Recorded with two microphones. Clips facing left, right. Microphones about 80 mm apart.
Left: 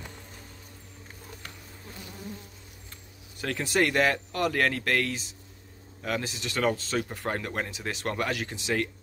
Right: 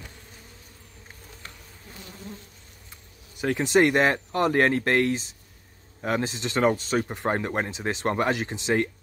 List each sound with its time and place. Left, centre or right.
3.3 s speech: centre